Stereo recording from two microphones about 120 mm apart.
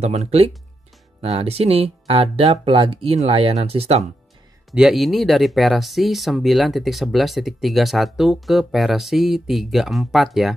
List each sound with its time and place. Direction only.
0.0 s speech: 65° right (ahead or behind)
4.6 s speech: 5° right (ahead or behind)